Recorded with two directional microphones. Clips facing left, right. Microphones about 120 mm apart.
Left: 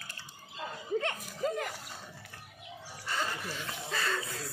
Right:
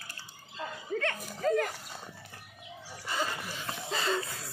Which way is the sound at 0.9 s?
20° left (ahead or behind).